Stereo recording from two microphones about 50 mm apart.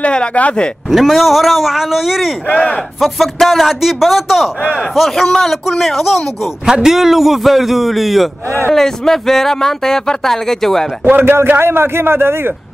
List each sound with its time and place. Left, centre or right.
0.0 s speech: left
0.8 s a man's voice: centre
2.5 s speech: left
3.0 s a man's voice: centre
11.1 s speech: right
11.4 s a man's voice: right